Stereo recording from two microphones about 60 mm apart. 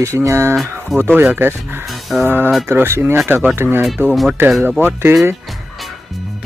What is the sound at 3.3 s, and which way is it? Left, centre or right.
Speech, right.